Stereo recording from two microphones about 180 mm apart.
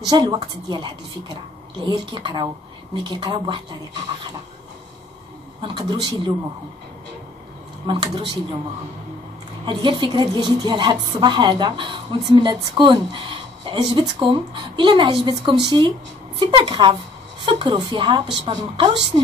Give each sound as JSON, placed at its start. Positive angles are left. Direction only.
{"t": 0.1, "sound": "a woman's voice", "side_deg": -20}
{"t": 5.6, "sound": "a woman's voice", "side_deg": -25}
{"t": 7.8, "sound": "speech", "side_deg": -25}
{"t": 9.7, "sound": "a woman's voice", "side_deg": -25}